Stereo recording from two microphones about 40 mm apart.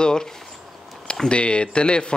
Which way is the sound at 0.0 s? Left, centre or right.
Centre.